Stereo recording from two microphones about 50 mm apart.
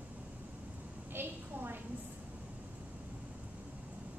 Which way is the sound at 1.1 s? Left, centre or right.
Right.